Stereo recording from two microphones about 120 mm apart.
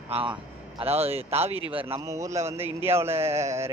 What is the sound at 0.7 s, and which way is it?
Speech, 55° right (ahead or behind).